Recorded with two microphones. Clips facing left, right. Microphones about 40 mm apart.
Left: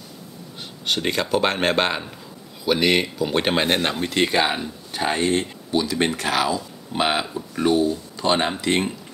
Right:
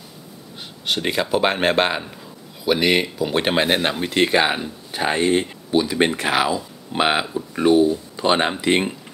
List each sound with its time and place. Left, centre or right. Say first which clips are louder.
0.8 s speech: right 1 dB; centre